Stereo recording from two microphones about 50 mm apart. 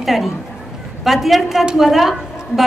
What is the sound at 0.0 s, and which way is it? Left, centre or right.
A woman's voice, centre.